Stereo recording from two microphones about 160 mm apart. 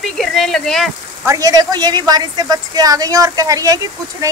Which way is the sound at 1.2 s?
20° right (ahead or behind).